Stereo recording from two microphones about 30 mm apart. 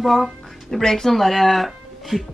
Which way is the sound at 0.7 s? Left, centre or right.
Centre.